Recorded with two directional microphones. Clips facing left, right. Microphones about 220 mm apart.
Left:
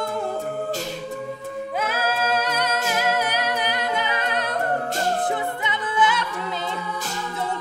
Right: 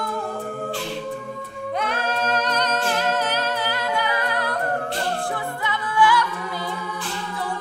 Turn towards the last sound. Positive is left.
turn(degrees=20)  # may be behind; listen again after turning